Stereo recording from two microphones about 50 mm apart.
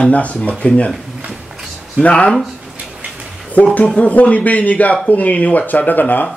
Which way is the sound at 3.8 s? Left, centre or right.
Left.